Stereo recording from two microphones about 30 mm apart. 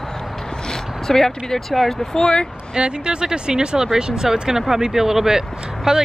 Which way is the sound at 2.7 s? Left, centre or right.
Right.